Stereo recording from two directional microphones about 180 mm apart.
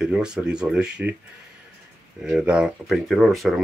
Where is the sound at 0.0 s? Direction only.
5° right (ahead or behind).